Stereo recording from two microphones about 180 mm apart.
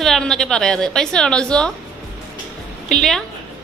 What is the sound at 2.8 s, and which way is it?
Speech, centre (ahead or behind).